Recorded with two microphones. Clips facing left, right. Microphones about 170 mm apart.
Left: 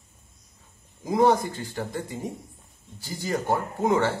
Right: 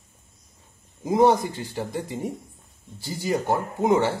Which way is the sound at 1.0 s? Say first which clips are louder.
Right 2 dB; 20° right (ahead or behind).